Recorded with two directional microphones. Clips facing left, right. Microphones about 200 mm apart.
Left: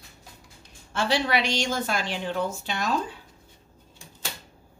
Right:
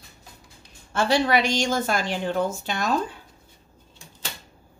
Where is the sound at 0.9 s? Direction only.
45° right (ahead or behind).